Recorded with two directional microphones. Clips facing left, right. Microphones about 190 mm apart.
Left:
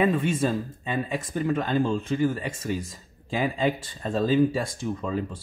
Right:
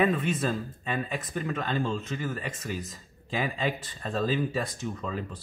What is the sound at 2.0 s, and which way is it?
Speech, 30° left (ahead or behind).